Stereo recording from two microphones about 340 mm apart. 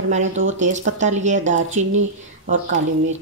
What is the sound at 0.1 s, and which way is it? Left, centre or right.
Speech, centre.